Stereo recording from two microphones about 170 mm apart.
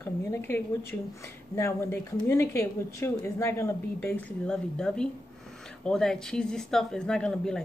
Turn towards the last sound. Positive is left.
turn(degrees=5)  # may be behind; listen again after turning